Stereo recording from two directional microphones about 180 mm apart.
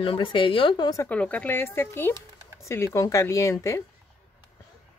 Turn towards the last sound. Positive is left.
turn(degrees=15)  # may be behind; listen again after turning